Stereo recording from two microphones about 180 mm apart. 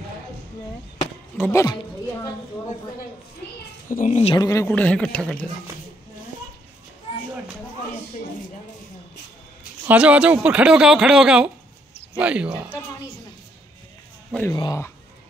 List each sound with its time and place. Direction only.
1.4 s a man's voice: 15° left (ahead or behind)
3.9 s speech: 45° left (ahead or behind)
4.4 s a man's voice: 15° left (ahead or behind)
9.8 s speech: 5° right (ahead or behind)
14.5 s speech: 20° left (ahead or behind)